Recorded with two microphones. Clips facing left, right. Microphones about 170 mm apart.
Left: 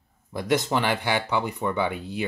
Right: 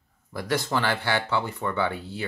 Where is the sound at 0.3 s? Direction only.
20° left (ahead or behind).